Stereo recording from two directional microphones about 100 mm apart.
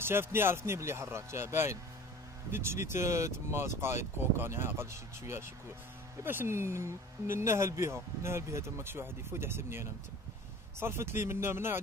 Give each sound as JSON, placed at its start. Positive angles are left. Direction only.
{"t": 0.0, "sound": "speech", "side_deg": -25}